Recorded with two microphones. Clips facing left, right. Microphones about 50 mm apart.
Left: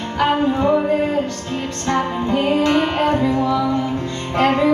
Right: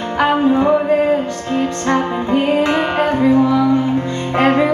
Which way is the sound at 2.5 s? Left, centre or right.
Right.